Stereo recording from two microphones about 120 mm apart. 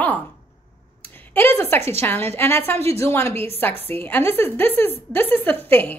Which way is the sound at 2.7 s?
60° right (ahead or behind).